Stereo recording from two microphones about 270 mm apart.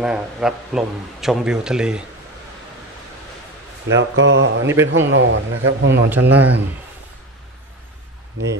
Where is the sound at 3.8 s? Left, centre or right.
Right.